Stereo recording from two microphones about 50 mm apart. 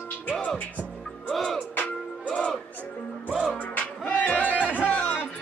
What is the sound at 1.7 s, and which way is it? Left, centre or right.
Music, left.